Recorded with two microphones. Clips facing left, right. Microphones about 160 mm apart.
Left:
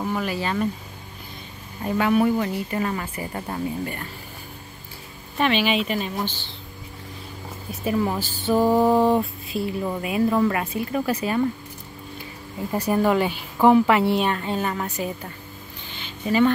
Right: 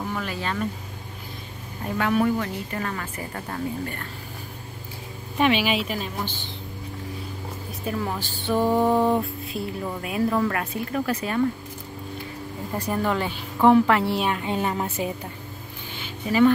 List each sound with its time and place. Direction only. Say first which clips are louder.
0.0 s speech: left 4 dB; 10° left (ahead or behind)
2.0 s a woman's voice: left 3 dB; 10° left (ahead or behind)
5.4 s a woman's voice: even; 5° right (ahead or behind)
7.8 s a woman's voice: left 5 dB; 10° left (ahead or behind)
12.9 s a woman's voice: left 5 dB; 10° left (ahead or behind); by 15.0 s 20° right (ahead or behind)
15.9 s music: left 2 dB; 5° right (ahead or behind)